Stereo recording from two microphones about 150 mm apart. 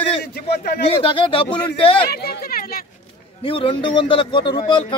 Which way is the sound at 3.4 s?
35° left (ahead or behind).